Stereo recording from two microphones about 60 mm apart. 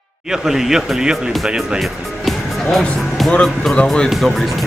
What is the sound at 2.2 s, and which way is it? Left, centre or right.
Music, centre.